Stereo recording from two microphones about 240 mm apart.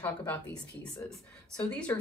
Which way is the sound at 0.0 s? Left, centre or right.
Centre.